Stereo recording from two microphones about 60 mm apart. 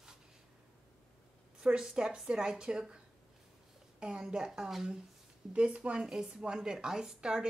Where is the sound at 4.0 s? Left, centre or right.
Centre.